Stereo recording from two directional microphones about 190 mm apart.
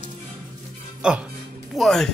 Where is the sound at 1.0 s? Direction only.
5° right (ahead or behind).